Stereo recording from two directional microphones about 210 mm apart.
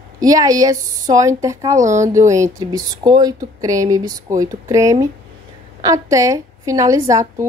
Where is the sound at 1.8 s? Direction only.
35° right (ahead or behind).